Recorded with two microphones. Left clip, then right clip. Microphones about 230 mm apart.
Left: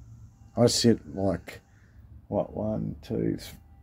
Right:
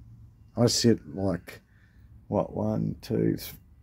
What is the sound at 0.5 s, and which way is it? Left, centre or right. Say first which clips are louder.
Speech: left 1 dB; centre.